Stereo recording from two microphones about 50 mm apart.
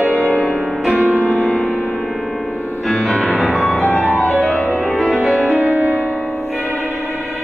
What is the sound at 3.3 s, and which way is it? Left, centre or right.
Music, centre.